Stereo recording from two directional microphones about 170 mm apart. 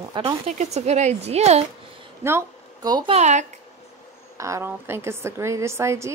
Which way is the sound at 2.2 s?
20° right (ahead or behind).